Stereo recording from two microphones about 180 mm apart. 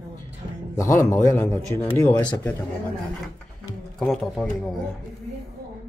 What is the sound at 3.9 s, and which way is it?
Speech, centre (ahead or behind).